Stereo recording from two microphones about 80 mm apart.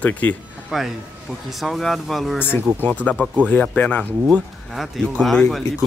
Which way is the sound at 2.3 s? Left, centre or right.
Left.